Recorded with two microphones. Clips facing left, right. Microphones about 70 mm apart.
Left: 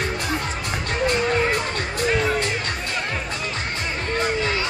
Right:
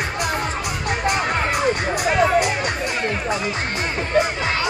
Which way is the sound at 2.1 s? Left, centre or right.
Centre.